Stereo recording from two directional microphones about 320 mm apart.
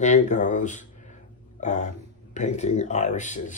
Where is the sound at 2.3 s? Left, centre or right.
Left.